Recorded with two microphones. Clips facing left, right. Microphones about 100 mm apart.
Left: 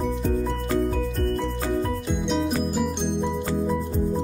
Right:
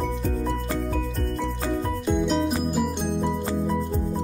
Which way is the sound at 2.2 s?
Centre (ahead or behind).